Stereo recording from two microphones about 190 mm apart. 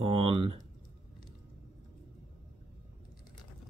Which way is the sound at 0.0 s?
30° right (ahead or behind).